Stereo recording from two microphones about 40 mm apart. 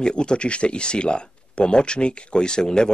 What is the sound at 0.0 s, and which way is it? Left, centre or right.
Speech, left.